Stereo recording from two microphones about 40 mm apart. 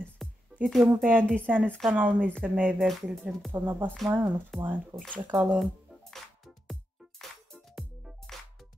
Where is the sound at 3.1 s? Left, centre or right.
Centre.